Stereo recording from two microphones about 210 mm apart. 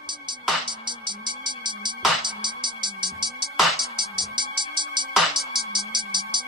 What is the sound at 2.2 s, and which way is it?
Music, 20° right (ahead or behind).